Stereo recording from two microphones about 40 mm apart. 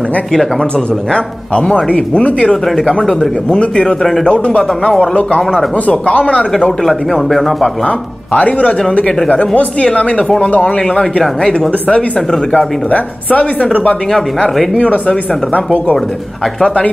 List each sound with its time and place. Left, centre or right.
0.3 s speech: centre
1.7 s speech: left
2.5 s speech: centre
3.8 s speech: centre
4.3 s speech: left
6.0 s speech: left
6.8 s speech: centre
7.8 s speech: left
9.9 s speech: left
11.9 s speech: left
12.9 s speech: left
14.8 s speech: left